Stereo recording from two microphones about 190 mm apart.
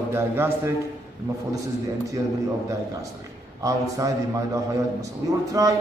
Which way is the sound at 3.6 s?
15° right (ahead or behind).